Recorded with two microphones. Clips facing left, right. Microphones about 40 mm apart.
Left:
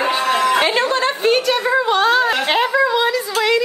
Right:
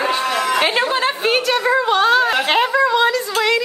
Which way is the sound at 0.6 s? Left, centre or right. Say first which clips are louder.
Left 1 dB; centre.